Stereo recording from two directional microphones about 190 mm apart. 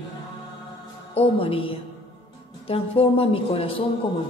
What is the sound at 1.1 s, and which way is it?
A woman's voice, 30° left (ahead or behind).